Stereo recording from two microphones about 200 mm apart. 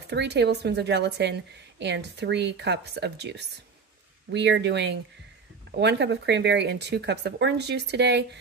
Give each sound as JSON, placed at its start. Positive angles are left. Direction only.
{"t": 0.1, "sound": "speech", "side_deg": -60}